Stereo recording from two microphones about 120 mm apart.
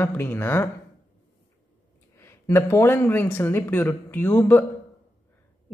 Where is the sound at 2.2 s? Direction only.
20° left (ahead or behind).